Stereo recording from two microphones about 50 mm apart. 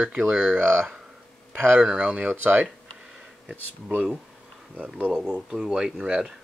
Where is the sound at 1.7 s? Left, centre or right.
Right.